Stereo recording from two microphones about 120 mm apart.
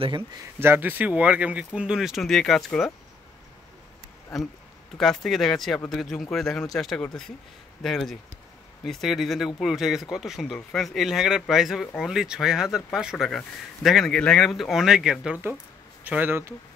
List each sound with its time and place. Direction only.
0.6 s speech: 20° right (ahead or behind); by 2.9 s centre (ahead or behind)
4.9 s speech: centre (ahead or behind)
16.0 s speech: 15° right (ahead or behind)